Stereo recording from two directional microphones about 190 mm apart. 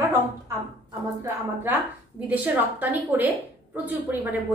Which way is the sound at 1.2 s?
10° right (ahead or behind).